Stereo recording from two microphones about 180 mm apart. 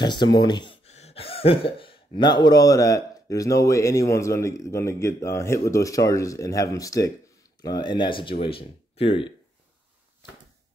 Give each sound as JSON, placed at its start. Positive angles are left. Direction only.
{"t": 0.0, "sound": "speech", "side_deg": 25}
{"t": 0.8, "sound": "speech", "side_deg": 35}